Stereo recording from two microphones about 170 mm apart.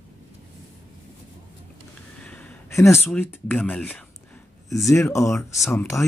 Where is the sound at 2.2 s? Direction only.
10° left (ahead or behind).